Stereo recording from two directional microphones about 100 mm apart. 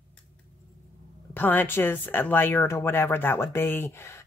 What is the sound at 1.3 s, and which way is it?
Speech, 20° left (ahead or behind).